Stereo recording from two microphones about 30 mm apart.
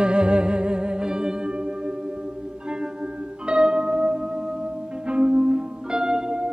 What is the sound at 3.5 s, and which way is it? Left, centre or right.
Music, right.